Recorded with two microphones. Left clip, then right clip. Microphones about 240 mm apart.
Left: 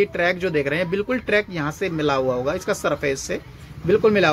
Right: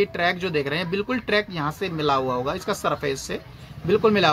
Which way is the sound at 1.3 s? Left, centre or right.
Centre.